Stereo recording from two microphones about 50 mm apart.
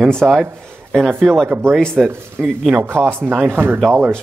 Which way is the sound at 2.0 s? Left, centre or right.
Right.